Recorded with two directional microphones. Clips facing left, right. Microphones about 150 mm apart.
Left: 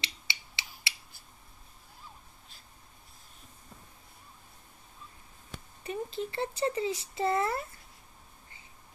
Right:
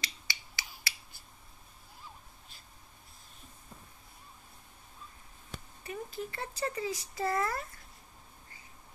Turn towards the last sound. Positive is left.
turn(degrees=25)  # may be behind; listen again after turning